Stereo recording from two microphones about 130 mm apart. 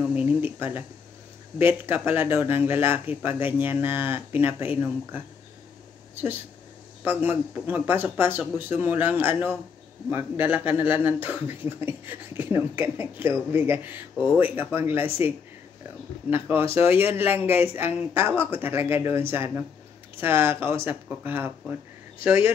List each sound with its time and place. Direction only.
0.0 s a sound: 10° right (ahead or behind)
1.6 s speech: 15° right (ahead or behind)
7.1 s speech: 15° right (ahead or behind)